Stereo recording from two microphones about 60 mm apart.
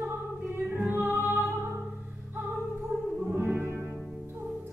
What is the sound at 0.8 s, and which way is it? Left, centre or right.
Music, right.